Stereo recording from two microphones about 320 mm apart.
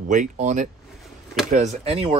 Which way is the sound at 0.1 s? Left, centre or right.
Right.